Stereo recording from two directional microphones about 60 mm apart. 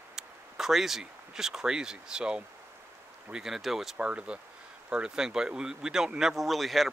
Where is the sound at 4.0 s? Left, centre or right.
Right.